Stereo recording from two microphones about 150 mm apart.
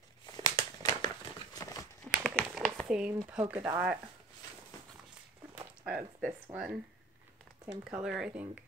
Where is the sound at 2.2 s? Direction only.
5° left (ahead or behind).